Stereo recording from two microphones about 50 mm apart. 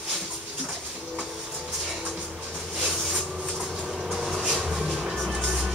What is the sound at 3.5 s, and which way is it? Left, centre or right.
Train, centre.